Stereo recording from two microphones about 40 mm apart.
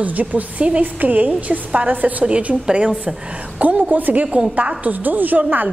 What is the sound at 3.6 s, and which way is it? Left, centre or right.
A woman's voice, right.